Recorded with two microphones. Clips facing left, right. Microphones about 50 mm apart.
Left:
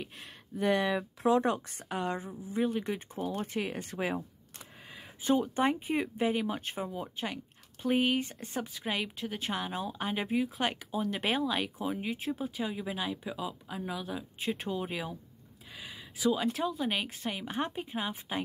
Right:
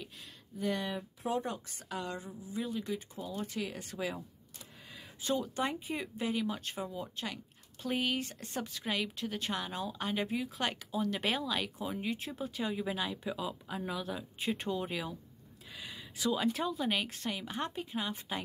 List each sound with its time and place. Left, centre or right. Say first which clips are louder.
0.0 s speech: left 5 dB; left
0.8 s speech: left 8 dB; left
1.7 s speech: left 5 dB; left; by 15.1 s centre
15.7 s a sound: left 1 dB; centre
16.5 s speech: left 1 dB; centre